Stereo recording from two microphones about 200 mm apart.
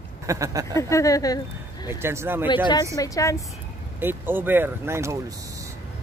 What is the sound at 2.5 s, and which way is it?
Speech, 20° left (ahead or behind).